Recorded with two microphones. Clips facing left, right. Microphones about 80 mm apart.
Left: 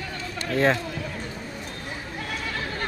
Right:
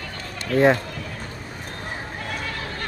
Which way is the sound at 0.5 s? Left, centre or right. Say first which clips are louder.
Right 5 dB; right.